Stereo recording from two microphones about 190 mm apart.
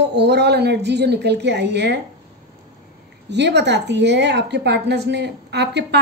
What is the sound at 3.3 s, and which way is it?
A woman's voice, 65° right (ahead or behind).